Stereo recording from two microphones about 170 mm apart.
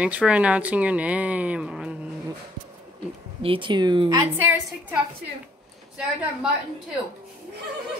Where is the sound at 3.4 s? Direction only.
30° right (ahead or behind).